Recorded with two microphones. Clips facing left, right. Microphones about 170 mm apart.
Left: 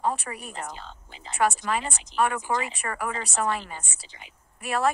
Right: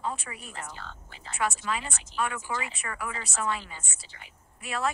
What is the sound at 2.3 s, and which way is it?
Speech, 50° left (ahead or behind).